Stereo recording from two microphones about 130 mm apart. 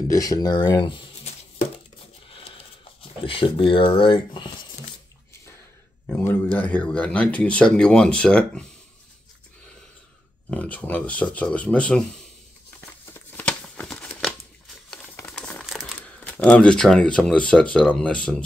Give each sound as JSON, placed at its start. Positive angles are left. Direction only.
{"t": 0.1, "sound": "speech", "side_deg": 30}
{"t": 2.3, "sound": "a sound", "side_deg": 45}
{"t": 3.3, "sound": "speech", "side_deg": 45}
{"t": 6.0, "sound": "speech", "side_deg": 15}
{"t": 10.5, "sound": "speech", "side_deg": 10}
{"t": 13.0, "sound": "crumpling", "side_deg": 15}
{"t": 15.6, "sound": "crumpling", "side_deg": 0}
{"t": 16.3, "sound": "speech", "side_deg": 10}